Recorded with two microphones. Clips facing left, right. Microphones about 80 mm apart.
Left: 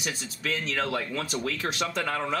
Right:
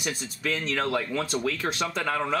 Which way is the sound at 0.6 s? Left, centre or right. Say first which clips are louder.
Right 3 dB; centre.